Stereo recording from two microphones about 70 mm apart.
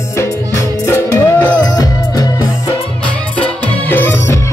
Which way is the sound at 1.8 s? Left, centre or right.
Left.